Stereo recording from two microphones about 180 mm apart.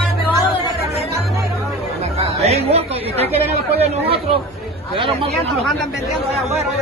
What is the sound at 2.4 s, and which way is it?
A woman's voice, 35° right (ahead or behind).